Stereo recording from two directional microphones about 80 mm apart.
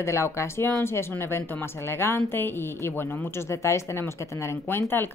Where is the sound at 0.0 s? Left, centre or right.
Left.